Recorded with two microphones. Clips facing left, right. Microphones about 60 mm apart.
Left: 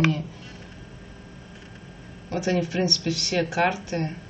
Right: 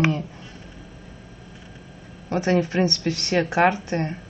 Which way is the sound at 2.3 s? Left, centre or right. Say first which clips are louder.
Right 4 dB; right.